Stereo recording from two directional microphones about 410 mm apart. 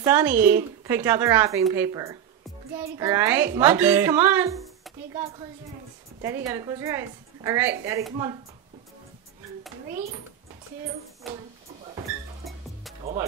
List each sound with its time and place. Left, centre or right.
0.0 s a woman's voice: centre
11.3 s a sound: centre
13.0 s speech: centre